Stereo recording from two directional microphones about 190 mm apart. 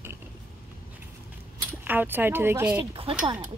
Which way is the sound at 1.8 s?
10° right (ahead or behind).